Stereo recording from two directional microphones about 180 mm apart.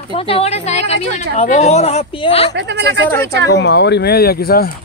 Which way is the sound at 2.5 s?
75° right (ahead or behind).